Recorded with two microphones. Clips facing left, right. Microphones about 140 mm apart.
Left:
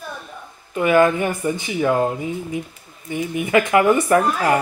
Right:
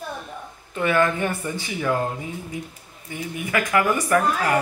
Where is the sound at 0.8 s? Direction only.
15° left (ahead or behind).